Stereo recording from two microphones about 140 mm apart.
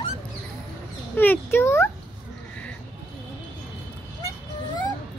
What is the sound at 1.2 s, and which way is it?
Speech, 15° left (ahead or behind).